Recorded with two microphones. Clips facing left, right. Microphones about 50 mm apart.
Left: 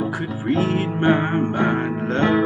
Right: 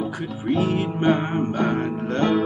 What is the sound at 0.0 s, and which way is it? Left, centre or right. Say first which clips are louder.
Music: left 3 dB; centre.